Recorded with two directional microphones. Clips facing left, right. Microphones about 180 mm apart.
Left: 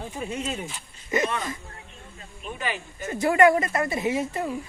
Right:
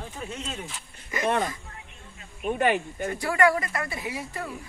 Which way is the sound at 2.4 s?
55° right (ahead or behind).